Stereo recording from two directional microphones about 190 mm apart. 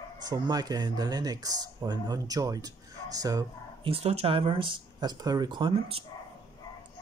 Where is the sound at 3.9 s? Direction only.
30° right (ahead or behind).